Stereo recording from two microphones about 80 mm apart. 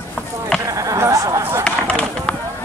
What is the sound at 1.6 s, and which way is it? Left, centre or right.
Chop, centre.